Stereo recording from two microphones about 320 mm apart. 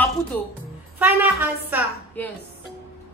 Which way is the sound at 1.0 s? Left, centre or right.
Centre.